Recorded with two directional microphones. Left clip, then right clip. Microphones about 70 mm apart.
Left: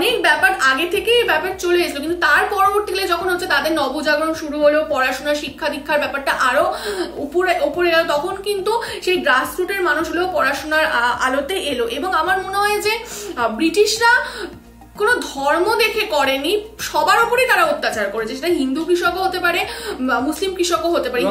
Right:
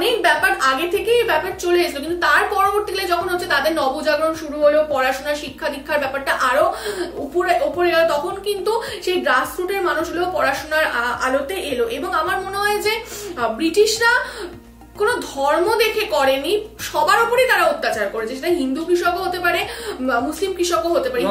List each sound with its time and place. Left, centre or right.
0.0 s a woman's voice: left
10.3 s a woman's voice: left